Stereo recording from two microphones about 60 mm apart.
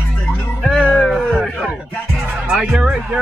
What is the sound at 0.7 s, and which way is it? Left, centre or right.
Music, centre.